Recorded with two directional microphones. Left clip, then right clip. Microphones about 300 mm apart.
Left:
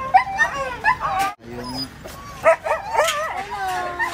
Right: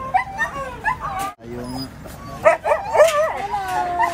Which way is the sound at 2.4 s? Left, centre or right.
Centre.